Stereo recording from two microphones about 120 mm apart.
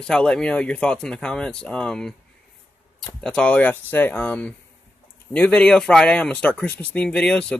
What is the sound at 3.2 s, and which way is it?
Speech, 10° left (ahead or behind).